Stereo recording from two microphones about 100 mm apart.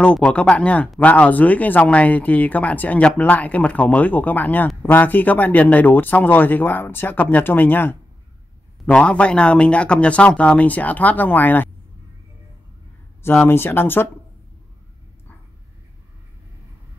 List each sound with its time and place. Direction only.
0.0 s speech: 10° left (ahead or behind)
13.2 s speech: 25° left (ahead or behind)